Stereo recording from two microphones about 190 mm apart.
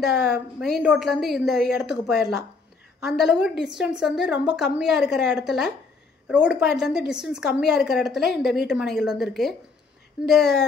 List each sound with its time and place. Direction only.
0.3 s a woman's voice: centre (ahead or behind)